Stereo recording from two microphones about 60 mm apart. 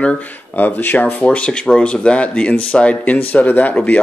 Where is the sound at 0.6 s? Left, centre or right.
Left.